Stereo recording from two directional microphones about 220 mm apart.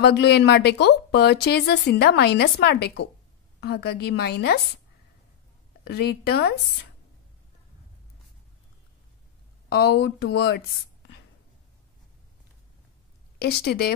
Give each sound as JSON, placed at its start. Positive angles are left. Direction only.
{"t": 0.0, "sound": "speech", "side_deg": 50}
{"t": 5.9, "sound": "speech", "side_deg": 45}
{"t": 9.7, "sound": "speech", "side_deg": 50}
{"t": 13.4, "sound": "speech", "side_deg": 45}